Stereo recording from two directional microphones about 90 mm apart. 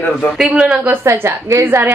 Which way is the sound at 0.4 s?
10° right (ahead or behind).